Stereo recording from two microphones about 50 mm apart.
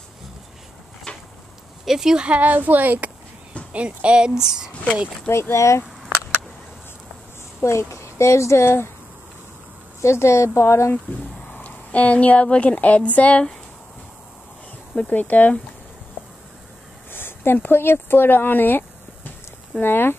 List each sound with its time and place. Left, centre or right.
1.1 s a sound: centre
1.9 s speech: centre
2.2 s a woman's voice: right
3.7 s a woman's voice: right
5.3 s speech: left
7.6 s speech: left
8.6 s speech: left
10.0 s speech: left
11.1 s a woman's voice: left
15.0 s speech: left
17.1 s speech: left